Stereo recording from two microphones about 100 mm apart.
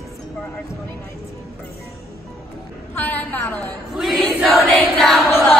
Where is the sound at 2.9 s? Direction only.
20° left (ahead or behind).